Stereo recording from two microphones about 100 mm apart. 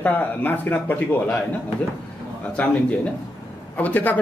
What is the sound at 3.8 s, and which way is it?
Speech, 15° left (ahead or behind).